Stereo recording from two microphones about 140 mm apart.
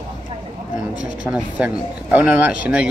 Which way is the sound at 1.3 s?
10° right (ahead or behind).